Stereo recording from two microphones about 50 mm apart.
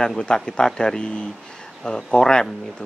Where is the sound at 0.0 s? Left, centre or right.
Centre.